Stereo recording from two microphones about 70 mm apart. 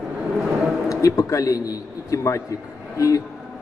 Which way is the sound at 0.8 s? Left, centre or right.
Left.